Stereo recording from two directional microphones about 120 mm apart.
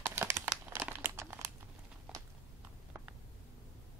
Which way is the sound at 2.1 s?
5° right (ahead or behind).